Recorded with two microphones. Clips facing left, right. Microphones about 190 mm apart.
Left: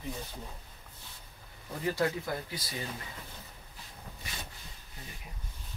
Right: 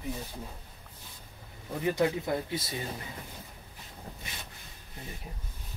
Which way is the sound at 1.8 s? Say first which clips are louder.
Right 3 dB; 20° right (ahead or behind).